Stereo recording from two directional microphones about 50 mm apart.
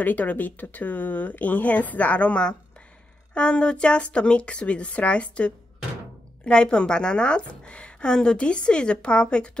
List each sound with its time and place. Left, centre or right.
0.0 s a woman's voice: left